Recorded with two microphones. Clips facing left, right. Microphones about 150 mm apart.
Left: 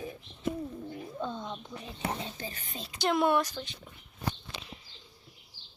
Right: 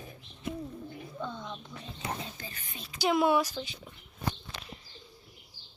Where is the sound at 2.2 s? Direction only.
35° left (ahead or behind).